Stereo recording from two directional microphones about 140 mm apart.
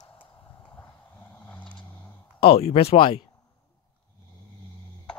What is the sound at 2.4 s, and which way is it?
Speech, 45° left (ahead or behind).